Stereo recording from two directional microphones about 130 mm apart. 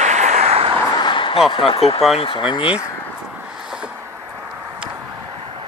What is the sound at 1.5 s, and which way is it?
Speech, 45° left (ahead or behind).